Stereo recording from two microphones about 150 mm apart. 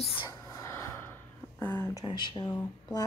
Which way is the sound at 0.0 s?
35° left (ahead or behind).